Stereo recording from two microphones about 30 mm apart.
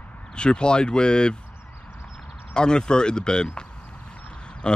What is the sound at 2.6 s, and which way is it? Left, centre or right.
Speech, left.